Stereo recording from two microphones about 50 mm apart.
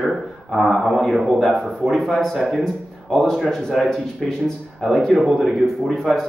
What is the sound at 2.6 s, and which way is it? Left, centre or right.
Speech, centre.